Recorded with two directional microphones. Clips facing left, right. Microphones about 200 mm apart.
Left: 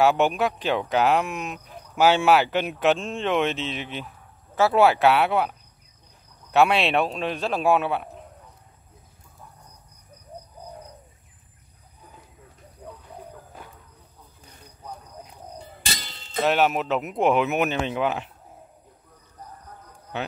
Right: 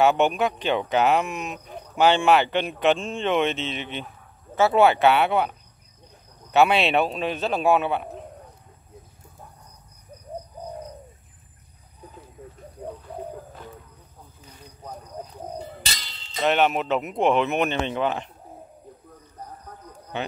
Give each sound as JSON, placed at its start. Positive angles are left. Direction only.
{"t": 0.0, "sound": "speech", "side_deg": 0}
{"t": 12.8, "sound": "bird", "side_deg": -55}
{"t": 15.8, "sound": "a sound", "side_deg": 50}
{"t": 16.3, "sound": "speech", "side_deg": 0}